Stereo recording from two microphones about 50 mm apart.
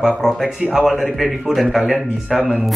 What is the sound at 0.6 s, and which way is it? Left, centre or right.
Speech, centre.